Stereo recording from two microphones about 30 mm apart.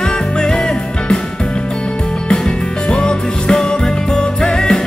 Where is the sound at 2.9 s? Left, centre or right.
Left.